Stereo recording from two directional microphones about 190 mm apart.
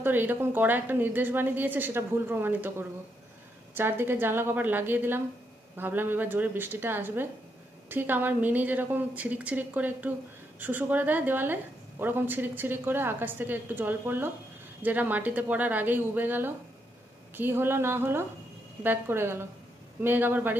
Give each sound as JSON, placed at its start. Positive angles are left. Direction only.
{"t": 0.0, "sound": "a woman's voice", "side_deg": -10}
{"t": 3.7, "sound": "a woman's voice", "side_deg": -10}